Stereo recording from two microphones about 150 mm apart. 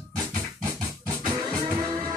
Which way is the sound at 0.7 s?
25° right (ahead or behind).